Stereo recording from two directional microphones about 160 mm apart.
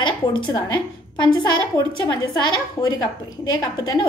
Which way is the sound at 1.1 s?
25° left (ahead or behind).